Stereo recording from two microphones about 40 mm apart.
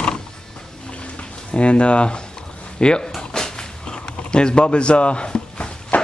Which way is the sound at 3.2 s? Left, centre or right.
Centre.